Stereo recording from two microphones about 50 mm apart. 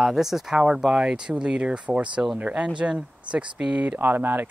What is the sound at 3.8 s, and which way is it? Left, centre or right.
Speech, right.